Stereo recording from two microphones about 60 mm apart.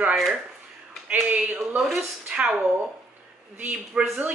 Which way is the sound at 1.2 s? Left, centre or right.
Right.